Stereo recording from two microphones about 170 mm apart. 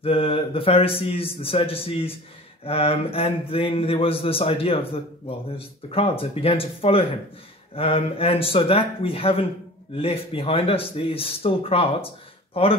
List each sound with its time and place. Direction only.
0.0 s speech: 35° left (ahead or behind)